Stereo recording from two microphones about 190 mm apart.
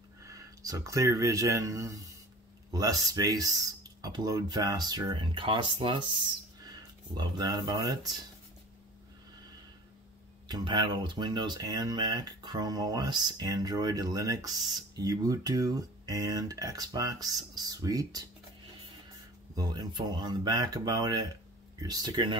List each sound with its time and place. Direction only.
0.2 s speech: 15° right (ahead or behind)
10.5 s speech: 25° right (ahead or behind)
19.5 s speech: 20° right (ahead or behind)